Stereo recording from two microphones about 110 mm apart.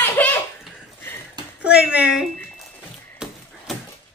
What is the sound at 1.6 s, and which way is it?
Speech, 10° right (ahead or behind).